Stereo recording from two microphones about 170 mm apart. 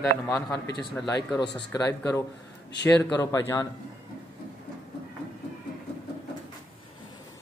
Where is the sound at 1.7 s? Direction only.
20° left (ahead or behind).